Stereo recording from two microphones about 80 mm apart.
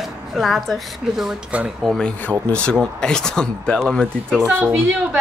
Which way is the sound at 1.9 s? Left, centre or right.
Centre.